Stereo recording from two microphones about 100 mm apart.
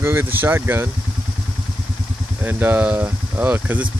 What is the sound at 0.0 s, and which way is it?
Speech, 25° right (ahead or behind).